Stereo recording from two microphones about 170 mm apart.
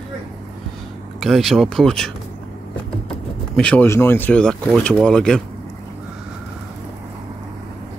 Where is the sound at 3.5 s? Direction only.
5° left (ahead or behind).